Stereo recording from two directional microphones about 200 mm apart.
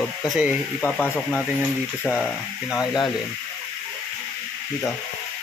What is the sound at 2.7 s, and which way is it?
Speech, 20° left (ahead or behind).